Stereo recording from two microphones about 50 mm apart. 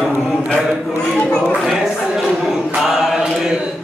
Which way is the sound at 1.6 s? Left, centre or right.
Centre.